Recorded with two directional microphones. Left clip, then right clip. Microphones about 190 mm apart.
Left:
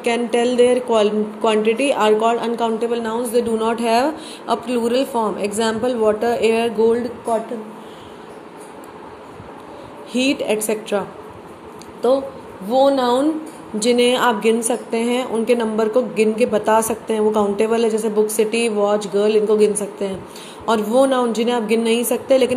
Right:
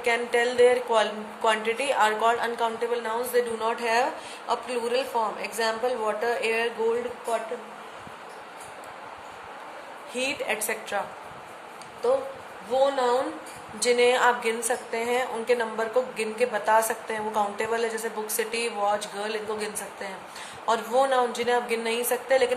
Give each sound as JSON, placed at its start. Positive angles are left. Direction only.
{"t": 0.0, "sound": "a woman's voice", "side_deg": 20}
{"t": 10.1, "sound": "a woman's voice", "side_deg": 25}
{"t": 12.7, "sound": "a woman's voice", "side_deg": 30}